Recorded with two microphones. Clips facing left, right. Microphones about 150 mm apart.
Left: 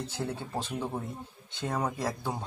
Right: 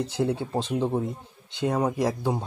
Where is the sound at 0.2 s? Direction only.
20° right (ahead or behind).